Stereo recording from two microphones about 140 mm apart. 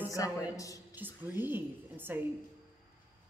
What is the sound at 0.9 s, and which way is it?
Speech, 15° right (ahead or behind).